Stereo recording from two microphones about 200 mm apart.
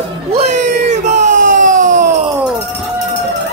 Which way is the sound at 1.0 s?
35° right (ahead or behind).